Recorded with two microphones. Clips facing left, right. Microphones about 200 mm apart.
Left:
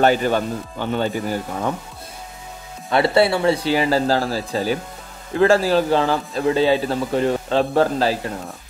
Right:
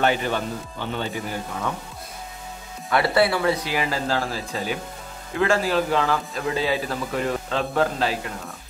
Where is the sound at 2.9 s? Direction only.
25° left (ahead or behind).